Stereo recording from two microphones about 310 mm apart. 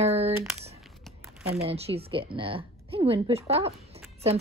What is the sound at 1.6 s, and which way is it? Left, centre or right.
Speech, centre.